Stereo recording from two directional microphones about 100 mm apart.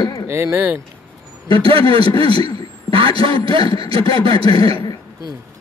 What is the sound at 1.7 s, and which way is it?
Speech, 65° right (ahead or behind).